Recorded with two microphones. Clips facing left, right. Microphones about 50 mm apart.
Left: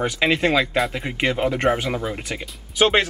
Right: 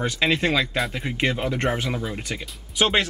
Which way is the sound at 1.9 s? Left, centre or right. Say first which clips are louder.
Left 3 dB; left.